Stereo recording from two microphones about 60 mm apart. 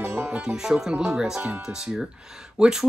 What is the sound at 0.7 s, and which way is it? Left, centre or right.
Speech, centre.